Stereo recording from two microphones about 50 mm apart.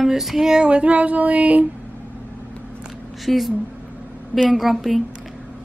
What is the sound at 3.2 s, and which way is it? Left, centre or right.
Speech, centre.